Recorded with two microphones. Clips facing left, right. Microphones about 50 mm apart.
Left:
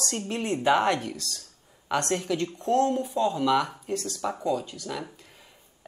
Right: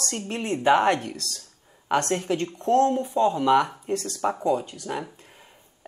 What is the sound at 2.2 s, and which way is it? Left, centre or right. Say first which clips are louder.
A man's voice: right 2 dB; right.